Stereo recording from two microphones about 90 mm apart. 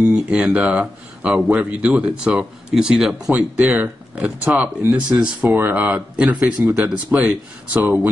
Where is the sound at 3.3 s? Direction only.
15° right (ahead or behind).